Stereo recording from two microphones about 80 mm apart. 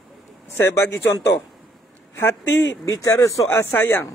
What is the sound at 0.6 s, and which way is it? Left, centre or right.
Speech, left.